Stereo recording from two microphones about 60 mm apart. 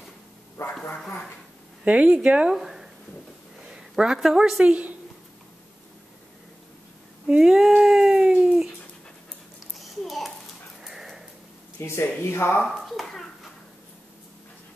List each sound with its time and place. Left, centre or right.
0.6 s speech: left
0.9 s speech: centre
1.9 s speech: centre
2.5 s a sound: centre
3.7 s a woman's voice: centre
7.2 s a sound: centre
9.8 s a sound: centre
10.8 s dog: centre
11.8 s speech: left
12.6 s bouncing: centre